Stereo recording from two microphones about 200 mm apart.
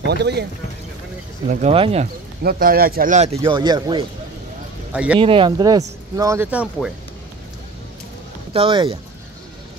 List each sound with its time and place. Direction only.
0.1 s speech: 55° right (ahead or behind)
1.5 s speech: 30° right (ahead or behind)
2.4 s speech: 50° right (ahead or behind); by 4.0 s 20° right (ahead or behind)
4.9 s speech: 5° right (ahead or behind)
5.2 s speech: 25° right (ahead or behind); by 6.9 s 5° right (ahead or behind)
8.5 s speech: 25° right (ahead or behind)